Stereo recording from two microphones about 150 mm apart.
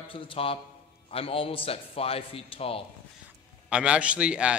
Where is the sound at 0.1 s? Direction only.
35° left (ahead or behind).